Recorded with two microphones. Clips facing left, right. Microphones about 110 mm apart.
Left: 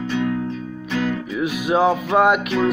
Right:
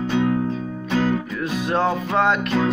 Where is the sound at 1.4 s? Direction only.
10° left (ahead or behind).